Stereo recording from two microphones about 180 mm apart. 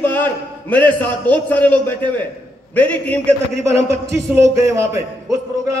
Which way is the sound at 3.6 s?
15° right (ahead or behind).